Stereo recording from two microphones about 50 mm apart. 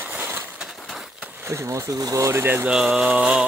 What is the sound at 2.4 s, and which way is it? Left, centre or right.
Speech, right.